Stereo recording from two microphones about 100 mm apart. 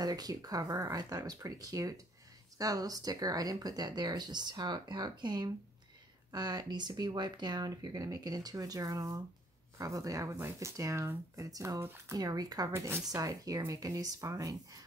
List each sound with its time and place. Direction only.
0.0 s speech: 40° right (ahead or behind)
11.8 s speech: 25° right (ahead or behind)
12.2 s speech: 40° right (ahead or behind)
13.0 s speech: 40° right (ahead or behind)